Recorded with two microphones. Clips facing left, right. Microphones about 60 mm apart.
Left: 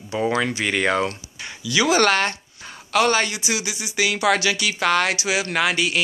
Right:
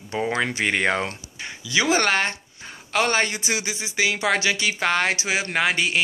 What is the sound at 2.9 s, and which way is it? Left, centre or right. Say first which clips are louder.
Speech: left 3 dB; right.